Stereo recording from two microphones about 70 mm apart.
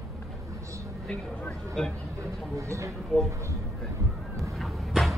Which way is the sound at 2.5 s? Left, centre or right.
Right.